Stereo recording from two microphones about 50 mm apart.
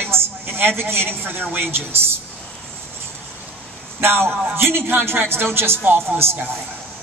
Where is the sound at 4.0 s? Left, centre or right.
Right.